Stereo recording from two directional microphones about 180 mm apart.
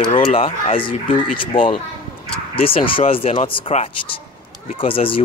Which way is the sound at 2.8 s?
30° left (ahead or behind).